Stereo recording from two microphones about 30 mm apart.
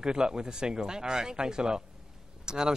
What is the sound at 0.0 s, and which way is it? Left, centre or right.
Speech, right.